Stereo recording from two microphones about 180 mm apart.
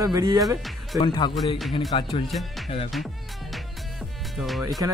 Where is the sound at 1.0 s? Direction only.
25° left (ahead or behind).